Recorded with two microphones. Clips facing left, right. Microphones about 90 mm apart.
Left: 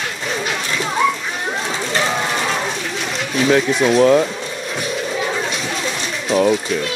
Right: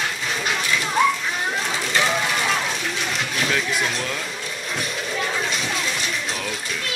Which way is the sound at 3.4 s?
35° left (ahead or behind).